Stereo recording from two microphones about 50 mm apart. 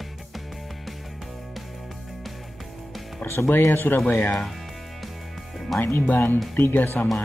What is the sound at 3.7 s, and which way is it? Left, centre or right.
Speech, left.